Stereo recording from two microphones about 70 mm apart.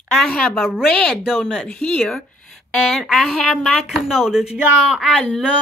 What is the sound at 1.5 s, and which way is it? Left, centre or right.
Speech, centre.